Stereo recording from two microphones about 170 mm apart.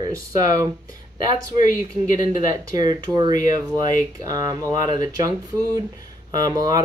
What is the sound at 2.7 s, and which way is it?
Speech, 25° right (ahead or behind).